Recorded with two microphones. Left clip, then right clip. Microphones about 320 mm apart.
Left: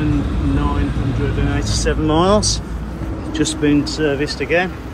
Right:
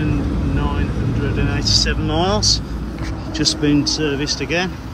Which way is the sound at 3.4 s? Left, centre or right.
Centre.